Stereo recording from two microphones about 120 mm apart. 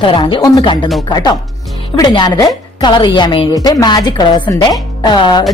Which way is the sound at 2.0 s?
35° left (ahead or behind).